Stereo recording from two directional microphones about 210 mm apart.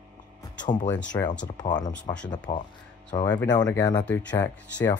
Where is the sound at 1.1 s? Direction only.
15° left (ahead or behind).